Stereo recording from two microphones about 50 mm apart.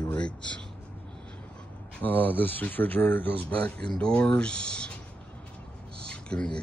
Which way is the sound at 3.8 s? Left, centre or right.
Centre.